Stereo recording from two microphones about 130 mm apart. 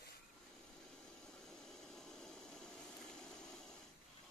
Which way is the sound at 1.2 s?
5° left (ahead or behind).